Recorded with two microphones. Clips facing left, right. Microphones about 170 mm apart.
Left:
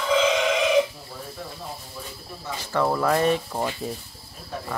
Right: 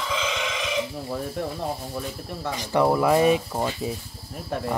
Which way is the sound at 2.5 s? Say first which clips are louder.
Right 3 dB; 15° right (ahead or behind).